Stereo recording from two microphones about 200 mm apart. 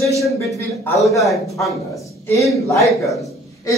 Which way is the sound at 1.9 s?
15° left (ahead or behind).